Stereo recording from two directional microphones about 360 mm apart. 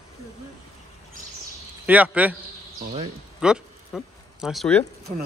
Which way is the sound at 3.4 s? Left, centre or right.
Centre.